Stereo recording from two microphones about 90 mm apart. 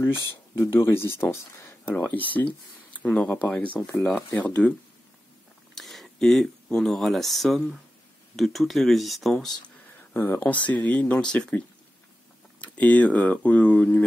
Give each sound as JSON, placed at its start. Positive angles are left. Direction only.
{"t": 0.7, "sound": "speech", "side_deg": 25}
{"t": 2.0, "sound": "speech", "side_deg": 20}
{"t": 5.8, "sound": "speech", "side_deg": 5}
{"t": 10.1, "sound": "speech", "side_deg": 25}